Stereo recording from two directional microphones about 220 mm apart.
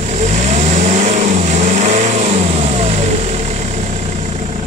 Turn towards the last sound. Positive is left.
turn(degrees=-30)  # may be behind; listen again after turning